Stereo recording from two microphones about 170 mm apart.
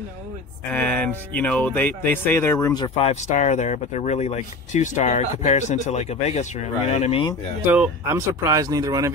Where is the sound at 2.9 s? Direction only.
40° left (ahead or behind).